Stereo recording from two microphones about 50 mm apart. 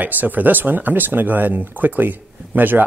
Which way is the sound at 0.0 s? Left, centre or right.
Right.